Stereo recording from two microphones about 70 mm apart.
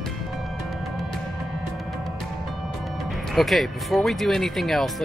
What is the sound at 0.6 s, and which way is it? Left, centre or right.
Music, centre.